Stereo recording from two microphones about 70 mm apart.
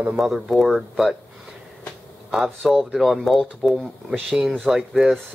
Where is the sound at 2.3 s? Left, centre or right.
Centre.